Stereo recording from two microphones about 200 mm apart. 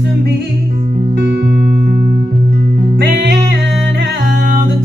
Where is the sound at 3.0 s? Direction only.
50° right (ahead or behind).